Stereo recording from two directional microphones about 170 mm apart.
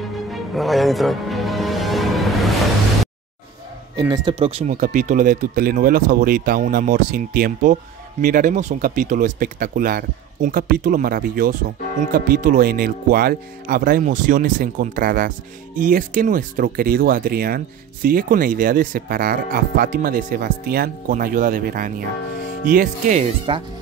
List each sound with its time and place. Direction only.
0.3 s music: centre (ahead or behind)
3.9 s speech: 20° right (ahead or behind)
4.4 s speech: 35° right (ahead or behind)
23.5 s speech: 30° right (ahead or behind)